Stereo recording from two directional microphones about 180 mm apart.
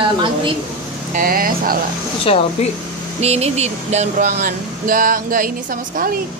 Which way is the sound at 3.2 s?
35° right (ahead or behind).